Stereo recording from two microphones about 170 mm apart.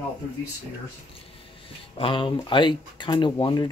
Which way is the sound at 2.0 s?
30° left (ahead or behind).